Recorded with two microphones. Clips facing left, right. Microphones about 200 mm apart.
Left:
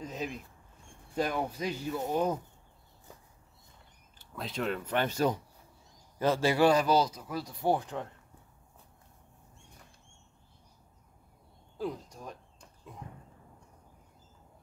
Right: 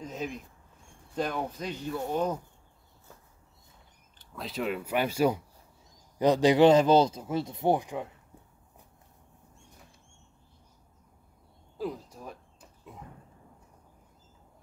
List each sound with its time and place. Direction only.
0.0 s mouse: centre (ahead or behind)
1.1 s speech: 5° left (ahead or behind)
4.2 s speech: centre (ahead or behind)
11.8 s a sound: 5° right (ahead or behind)